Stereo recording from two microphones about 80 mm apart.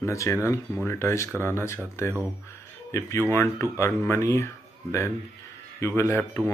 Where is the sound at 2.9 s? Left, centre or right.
Left.